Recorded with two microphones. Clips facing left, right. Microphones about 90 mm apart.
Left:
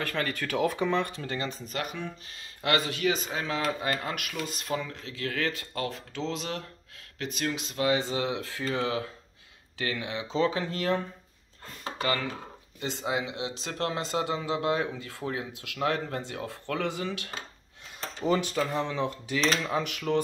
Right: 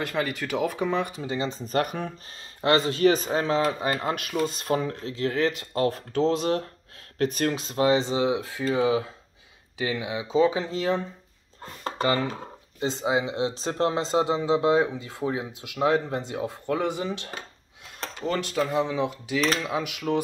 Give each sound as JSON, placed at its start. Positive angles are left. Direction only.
{"t": 0.0, "sound": "speech", "side_deg": -10}
{"t": 1.7, "sound": "speech", "side_deg": -45}
{"t": 2.6, "sound": "speech", "side_deg": -30}
{"t": 5.1, "sound": "speech", "side_deg": -25}
{"t": 5.9, "sound": "speech", "side_deg": -45}
{"t": 10.6, "sound": "speech", "side_deg": -20}
{"t": 12.0, "sound": "speech", "side_deg": -25}
{"t": 18.2, "sound": "speech", "side_deg": 5}